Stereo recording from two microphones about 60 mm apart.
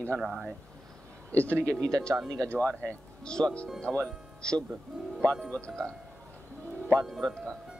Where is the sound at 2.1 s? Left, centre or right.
Right.